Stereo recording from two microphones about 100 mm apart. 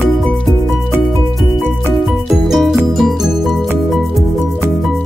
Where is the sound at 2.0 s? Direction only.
Centre (ahead or behind).